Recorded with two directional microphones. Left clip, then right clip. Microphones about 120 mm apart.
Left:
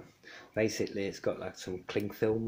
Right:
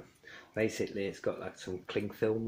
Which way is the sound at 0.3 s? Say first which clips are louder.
Left 2 dB; 20° left (ahead or behind).